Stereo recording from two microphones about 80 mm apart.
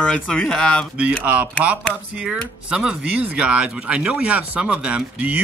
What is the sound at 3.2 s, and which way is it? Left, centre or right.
Speech, centre.